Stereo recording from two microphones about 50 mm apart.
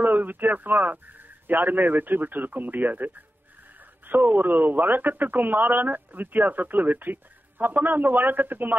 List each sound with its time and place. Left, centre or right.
0.0 s speech: right